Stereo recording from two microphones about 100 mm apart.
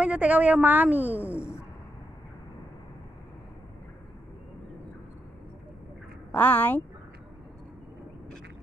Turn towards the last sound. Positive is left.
turn(degrees=15)  # may be behind; listen again after turning